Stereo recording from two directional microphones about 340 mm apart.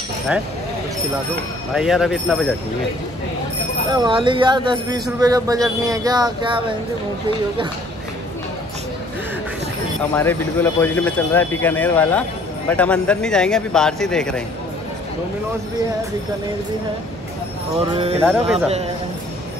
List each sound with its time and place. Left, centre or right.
1.7 s speech: centre
3.9 s speech: centre
10.1 s speech: centre
17.7 s speech: centre